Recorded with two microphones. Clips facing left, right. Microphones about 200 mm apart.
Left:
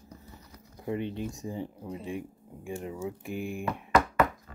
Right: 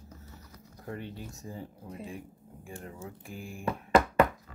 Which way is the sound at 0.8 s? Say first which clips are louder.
Left 8 dB; 20° left (ahead or behind).